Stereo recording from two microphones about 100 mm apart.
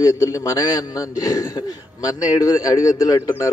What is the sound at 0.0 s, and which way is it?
A man's voice, 30° left (ahead or behind).